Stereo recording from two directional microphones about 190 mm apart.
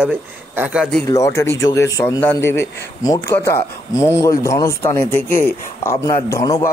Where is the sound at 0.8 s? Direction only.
10° left (ahead or behind).